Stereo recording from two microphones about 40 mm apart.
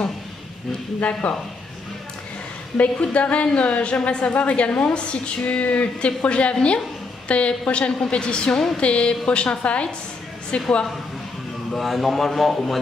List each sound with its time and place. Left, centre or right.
1.2 s a woman's voice: left
2.8 s a woman's voice: left
11.7 s a man's voice: centre